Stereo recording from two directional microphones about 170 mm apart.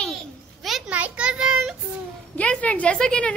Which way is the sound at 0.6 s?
5° right (ahead or behind).